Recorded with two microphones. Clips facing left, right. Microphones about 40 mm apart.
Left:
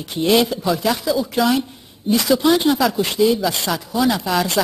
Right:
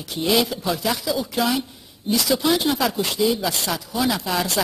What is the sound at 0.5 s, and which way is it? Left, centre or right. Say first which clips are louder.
Speech: left 4 dB; centre.